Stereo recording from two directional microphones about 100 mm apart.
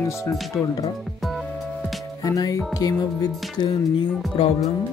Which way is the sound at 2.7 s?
40° left (ahead or behind).